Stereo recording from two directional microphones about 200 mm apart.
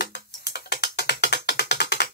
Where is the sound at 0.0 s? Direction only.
60° left (ahead or behind).